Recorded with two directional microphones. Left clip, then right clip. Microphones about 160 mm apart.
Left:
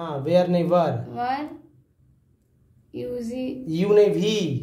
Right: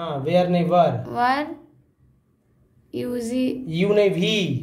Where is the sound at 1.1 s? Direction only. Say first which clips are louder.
Right 6 dB; 90° right.